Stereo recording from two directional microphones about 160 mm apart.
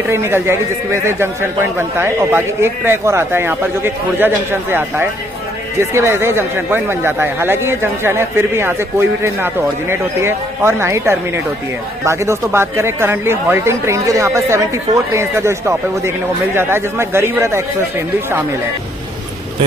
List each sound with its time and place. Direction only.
0.1 s speech: 15° right (ahead or behind)